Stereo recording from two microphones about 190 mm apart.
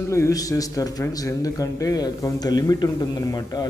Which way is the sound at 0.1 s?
15° left (ahead or behind).